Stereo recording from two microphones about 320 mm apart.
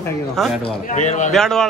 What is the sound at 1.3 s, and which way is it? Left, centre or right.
Speech, centre.